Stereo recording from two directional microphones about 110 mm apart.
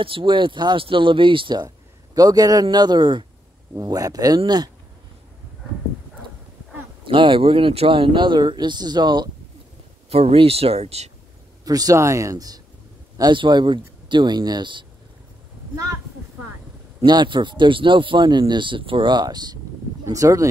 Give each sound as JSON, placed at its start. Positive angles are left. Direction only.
{"t": 0.0, "sound": "speech", "side_deg": -50}
{"t": 3.7, "sound": "speech", "side_deg": -35}
{"t": 7.1, "sound": "speech", "side_deg": -50}
{"t": 10.0, "sound": "speech", "side_deg": -65}
{"t": 11.6, "sound": "speech", "side_deg": -35}
{"t": 13.2, "sound": "speech", "side_deg": -45}
{"t": 17.0, "sound": "speech", "side_deg": -45}